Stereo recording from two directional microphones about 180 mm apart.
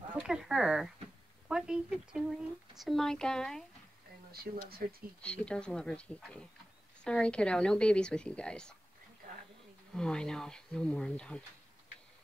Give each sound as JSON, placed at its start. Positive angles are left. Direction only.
{"t": 0.1, "sound": "speech", "side_deg": -5}
{"t": 4.3, "sound": "speech", "side_deg": -60}
{"t": 5.2, "sound": "speech", "side_deg": 5}
{"t": 9.9, "sound": "speech", "side_deg": 5}